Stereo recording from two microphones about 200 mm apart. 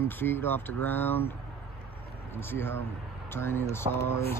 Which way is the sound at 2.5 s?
10° left (ahead or behind).